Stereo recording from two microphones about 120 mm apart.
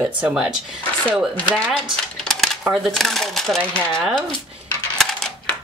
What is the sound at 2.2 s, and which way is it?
Speech, centre (ahead or behind).